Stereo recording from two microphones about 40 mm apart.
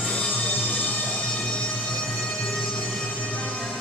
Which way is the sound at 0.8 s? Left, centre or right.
Centre.